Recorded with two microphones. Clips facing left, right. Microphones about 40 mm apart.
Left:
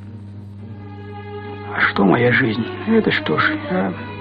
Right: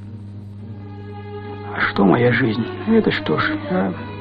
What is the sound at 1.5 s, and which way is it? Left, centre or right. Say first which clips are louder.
Speech: left 3 dB; left.